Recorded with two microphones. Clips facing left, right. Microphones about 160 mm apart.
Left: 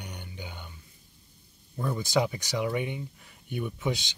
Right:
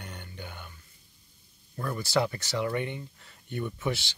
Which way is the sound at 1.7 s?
15° left (ahead or behind).